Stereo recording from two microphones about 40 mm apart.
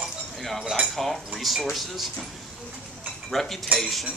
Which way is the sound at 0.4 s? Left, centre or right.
Centre.